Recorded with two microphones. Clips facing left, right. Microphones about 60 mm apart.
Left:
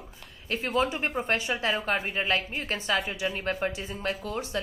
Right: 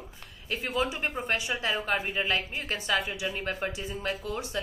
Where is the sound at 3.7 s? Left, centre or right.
Left.